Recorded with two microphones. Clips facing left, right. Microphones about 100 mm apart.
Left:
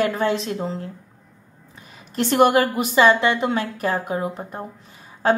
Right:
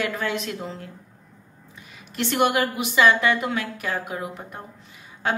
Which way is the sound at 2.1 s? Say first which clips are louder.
Left 5 dB; 40° left (ahead or behind).